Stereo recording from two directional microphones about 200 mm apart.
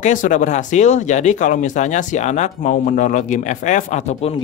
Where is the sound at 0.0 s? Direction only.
40° left (ahead or behind).